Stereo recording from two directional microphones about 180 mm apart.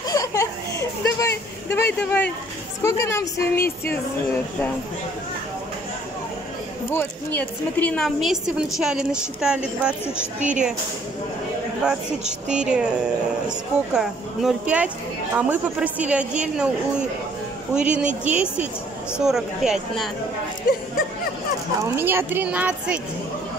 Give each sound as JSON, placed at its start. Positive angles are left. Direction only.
{"t": 0.1, "sound": "a sound", "side_deg": 20}
{"t": 2.0, "sound": "a woman's voice", "side_deg": 10}
{"t": 6.9, "sound": "a woman's voice", "side_deg": 10}
{"t": 10.4, "sound": "speech", "side_deg": -45}
{"t": 11.8, "sound": "a woman's voice", "side_deg": -5}
{"t": 13.9, "sound": "a woman's voice", "side_deg": -5}
{"t": 17.7, "sound": "a woman's voice", "side_deg": -5}
{"t": 21.8, "sound": "speech", "side_deg": -10}